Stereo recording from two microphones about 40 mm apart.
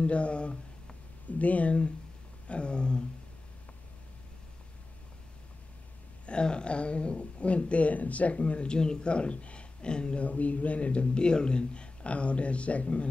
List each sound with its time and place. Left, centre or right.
0.0 s a man's voice: left
6.2 s a man's voice: left
8.6 s speech: left
10.2 s a man's voice: left